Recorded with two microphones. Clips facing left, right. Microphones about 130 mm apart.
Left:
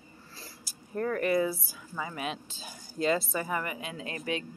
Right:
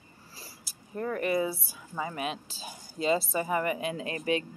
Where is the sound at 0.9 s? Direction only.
15° right (ahead or behind).